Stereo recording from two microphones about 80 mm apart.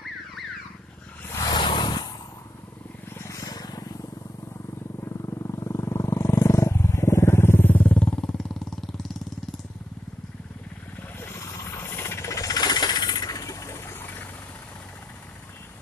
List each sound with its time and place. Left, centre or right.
1.4 s vehicle: left
3.2 s vehicle: left
5.0 s wild animals: left; by 8.5 s centre
11.1 s a sound: left